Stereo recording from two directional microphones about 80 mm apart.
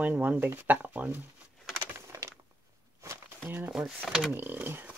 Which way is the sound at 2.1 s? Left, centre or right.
Right.